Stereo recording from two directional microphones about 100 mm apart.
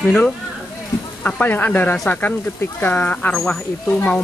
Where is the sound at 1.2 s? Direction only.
15° left (ahead or behind).